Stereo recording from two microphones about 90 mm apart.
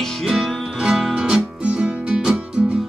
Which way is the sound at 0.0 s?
Centre (ahead or behind).